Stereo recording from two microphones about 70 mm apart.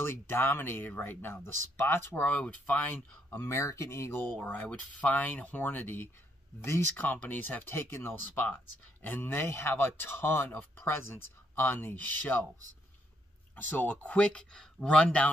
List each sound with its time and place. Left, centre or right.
0.0 s speech: left
3.4 s speech: left
4.4 s speech: centre
13.6 s speech: left